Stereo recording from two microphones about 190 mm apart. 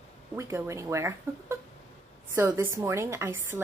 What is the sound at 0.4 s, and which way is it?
A woman's voice, 15° right (ahead or behind).